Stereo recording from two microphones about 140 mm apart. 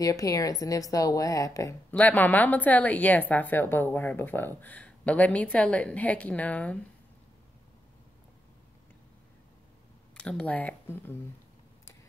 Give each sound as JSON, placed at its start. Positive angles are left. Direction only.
{"t": 0.0, "sound": "a woman's voice", "side_deg": 25}
{"t": 1.9, "sound": "a woman's voice", "side_deg": 10}
{"t": 10.1, "sound": "a woman's voice", "side_deg": 5}